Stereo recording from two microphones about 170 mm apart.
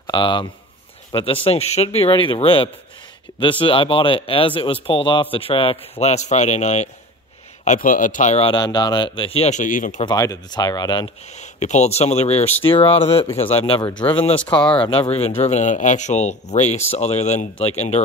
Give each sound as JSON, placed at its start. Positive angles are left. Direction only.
{"t": 0.0, "sound": "speech", "side_deg": 30}
{"t": 8.5, "sound": "speech", "side_deg": 25}
{"t": 10.0, "sound": "speech", "side_deg": 20}
{"t": 11.3, "sound": "speech", "side_deg": 40}
{"t": 14.6, "sound": "speech", "side_deg": 5}
{"t": 14.9, "sound": "speech", "side_deg": 35}